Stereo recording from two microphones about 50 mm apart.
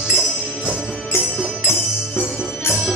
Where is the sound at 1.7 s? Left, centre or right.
Left.